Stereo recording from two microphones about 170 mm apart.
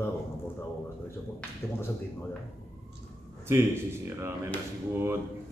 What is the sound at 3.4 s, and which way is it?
Speech, 15° right (ahead or behind).